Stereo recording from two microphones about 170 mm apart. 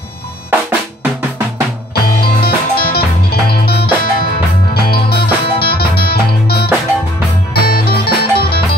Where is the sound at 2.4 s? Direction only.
65° left (ahead or behind).